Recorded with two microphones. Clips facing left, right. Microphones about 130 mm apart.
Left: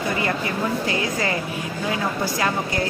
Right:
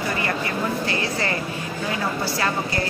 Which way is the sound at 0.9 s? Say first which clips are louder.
Left 1 dB; 15° left (ahead or behind).